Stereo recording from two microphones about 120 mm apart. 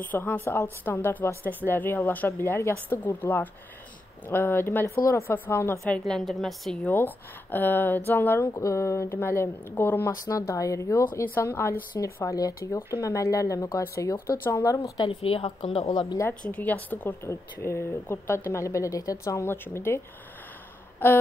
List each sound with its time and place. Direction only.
0.0 s a woman's voice: 15° left (ahead or behind)
5.9 s a woman's voice: 5° left (ahead or behind)
6.9 s a woman's voice: 15° left (ahead or behind)
10.2 s speech: 30° left (ahead or behind)
15.0 s a woman's voice: 50° left (ahead or behind)
16.4 s a woman's voice: 15° left (ahead or behind)
21.0 s a woman's voice: 15° left (ahead or behind)